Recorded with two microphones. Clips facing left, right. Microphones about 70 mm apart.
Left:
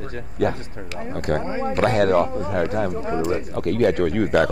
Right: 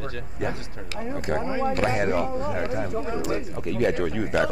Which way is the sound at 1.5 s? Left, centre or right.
Left.